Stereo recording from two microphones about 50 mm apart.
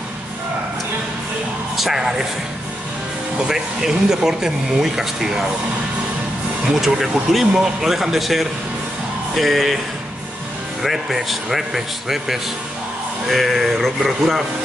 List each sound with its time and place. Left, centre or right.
1.8 s speech: centre
3.4 s speech: centre
6.8 s speech: centre
10.8 s speech: centre